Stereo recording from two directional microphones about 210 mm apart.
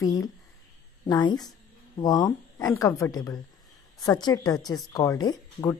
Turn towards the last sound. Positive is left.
turn(degrees=15)  # may be behind; listen again after turning